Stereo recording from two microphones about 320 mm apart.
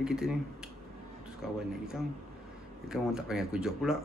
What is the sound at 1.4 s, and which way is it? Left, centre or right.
Speech, centre.